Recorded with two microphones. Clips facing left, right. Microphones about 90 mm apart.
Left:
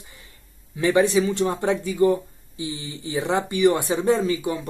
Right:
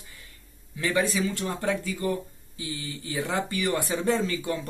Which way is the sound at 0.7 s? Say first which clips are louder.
Left 7 dB; 20° left (ahead or behind).